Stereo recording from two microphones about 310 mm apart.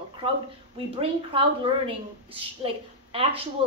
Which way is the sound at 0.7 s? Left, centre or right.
Centre.